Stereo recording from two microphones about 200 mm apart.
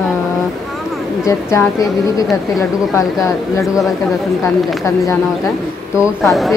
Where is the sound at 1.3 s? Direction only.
15° left (ahead or behind).